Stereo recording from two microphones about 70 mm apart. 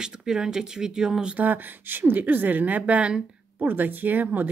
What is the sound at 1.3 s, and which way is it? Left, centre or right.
Speech, right.